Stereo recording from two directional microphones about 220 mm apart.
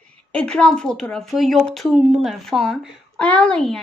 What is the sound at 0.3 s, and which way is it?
A woman's voice, 5° left (ahead or behind).